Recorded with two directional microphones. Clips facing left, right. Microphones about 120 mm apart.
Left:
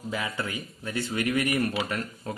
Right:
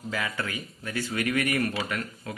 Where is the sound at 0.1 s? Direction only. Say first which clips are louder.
Even; 20° left (ahead or behind).